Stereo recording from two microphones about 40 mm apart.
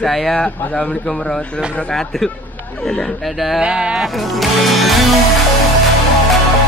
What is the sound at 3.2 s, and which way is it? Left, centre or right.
Speech, centre.